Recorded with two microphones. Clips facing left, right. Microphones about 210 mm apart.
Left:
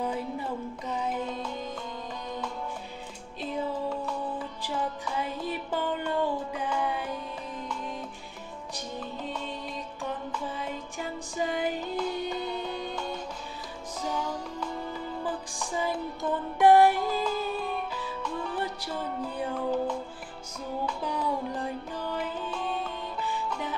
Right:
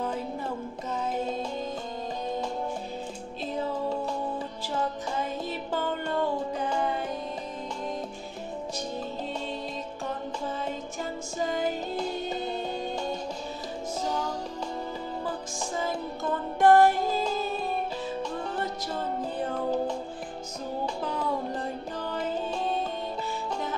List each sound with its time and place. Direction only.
1.1 s music: 40° right (ahead or behind)
5.0 s music: 40° right (ahead or behind)
11.4 s music: 45° right (ahead or behind)
16.6 s music: 15° left (ahead or behind)
16.9 s music: 45° right (ahead or behind)
22.1 s music: 40° right (ahead or behind)